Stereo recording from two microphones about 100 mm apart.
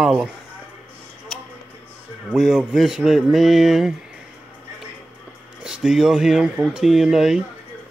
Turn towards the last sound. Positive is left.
turn(degrees=-5)  # may be behind; listen again after turning